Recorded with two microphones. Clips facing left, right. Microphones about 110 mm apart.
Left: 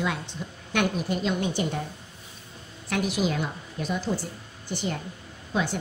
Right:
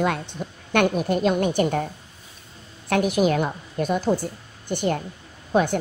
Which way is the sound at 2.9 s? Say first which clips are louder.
Right 7 dB; 55° right (ahead or behind).